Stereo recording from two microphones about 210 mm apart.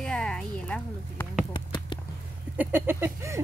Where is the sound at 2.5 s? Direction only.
10° right (ahead or behind).